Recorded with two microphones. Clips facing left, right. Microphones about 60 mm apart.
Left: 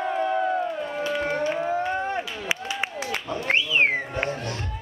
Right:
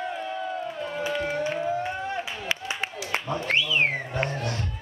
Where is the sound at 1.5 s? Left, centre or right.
Left.